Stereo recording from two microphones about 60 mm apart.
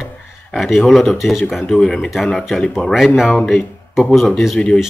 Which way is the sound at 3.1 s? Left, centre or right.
Centre.